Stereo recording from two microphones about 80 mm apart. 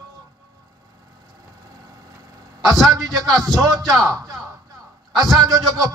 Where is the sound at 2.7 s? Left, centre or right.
Centre.